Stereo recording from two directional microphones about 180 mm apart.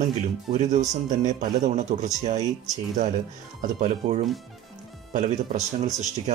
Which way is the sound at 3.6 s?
40° right (ahead or behind).